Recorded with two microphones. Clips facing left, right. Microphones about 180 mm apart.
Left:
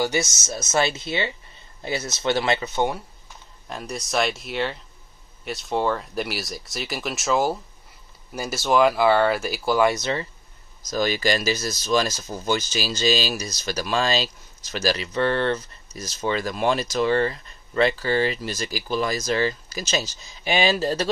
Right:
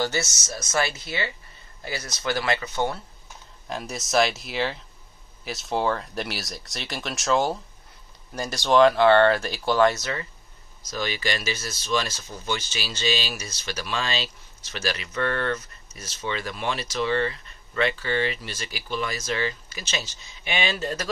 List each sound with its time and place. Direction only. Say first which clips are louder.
0.0 s speech: left 3 dB; 15° left (ahead or behind)
3.6 s speech: even; centre (ahead or behind)
9.9 s speech: left 5 dB; 20° left (ahead or behind)
10.8 s speech: left 6 dB; 40° left (ahead or behind)